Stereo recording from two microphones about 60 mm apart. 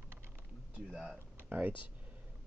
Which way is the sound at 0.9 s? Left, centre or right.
Centre.